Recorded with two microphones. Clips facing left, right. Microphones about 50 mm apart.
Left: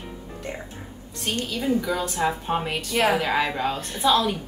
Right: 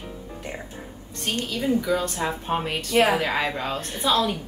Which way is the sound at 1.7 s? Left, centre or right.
Centre.